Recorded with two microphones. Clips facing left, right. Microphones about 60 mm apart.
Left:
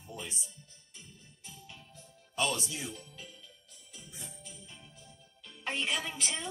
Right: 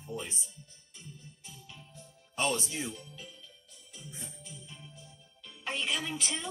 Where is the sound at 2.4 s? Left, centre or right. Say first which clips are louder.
Right 1 dB; right.